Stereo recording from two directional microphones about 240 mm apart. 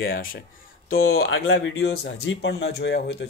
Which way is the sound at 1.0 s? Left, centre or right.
Left.